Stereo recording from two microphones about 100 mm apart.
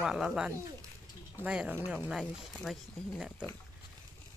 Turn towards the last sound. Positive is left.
turn(degrees=-5)  # may be behind; listen again after turning